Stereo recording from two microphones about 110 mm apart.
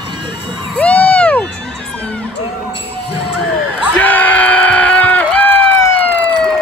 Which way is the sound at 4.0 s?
15° left (ahead or behind).